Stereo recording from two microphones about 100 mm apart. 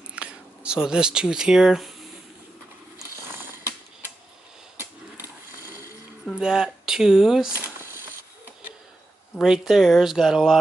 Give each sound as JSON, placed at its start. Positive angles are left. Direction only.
{"t": 0.1, "sound": "speech", "side_deg": -10}
{"t": 6.3, "sound": "speech", "side_deg": -5}
{"t": 9.4, "sound": "speech", "side_deg": -5}